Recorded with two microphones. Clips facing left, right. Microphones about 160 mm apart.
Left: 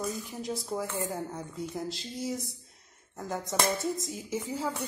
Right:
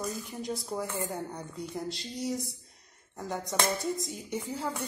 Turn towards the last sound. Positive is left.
turn(degrees=5)  # may be behind; listen again after turning